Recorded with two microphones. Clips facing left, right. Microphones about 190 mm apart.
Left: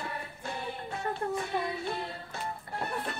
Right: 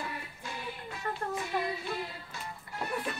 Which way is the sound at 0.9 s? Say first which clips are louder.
Left 3 dB; 60° left (ahead or behind).